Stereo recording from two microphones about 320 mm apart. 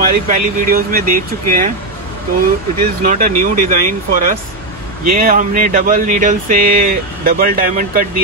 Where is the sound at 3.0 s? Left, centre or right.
Right.